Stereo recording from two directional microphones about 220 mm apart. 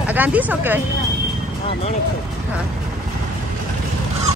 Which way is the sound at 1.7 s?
30° left (ahead or behind).